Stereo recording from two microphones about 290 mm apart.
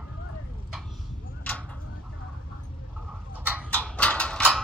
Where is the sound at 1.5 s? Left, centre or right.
Centre.